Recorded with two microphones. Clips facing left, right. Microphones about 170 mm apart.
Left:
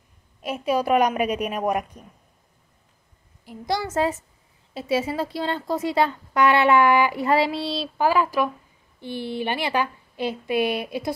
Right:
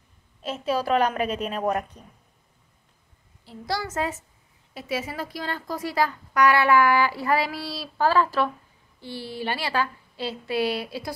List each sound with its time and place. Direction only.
0.4 s a woman's voice: 15° left (ahead or behind)
3.4 s a woman's voice: 20° left (ahead or behind)
8.0 s a woman's voice: 15° left (ahead or behind)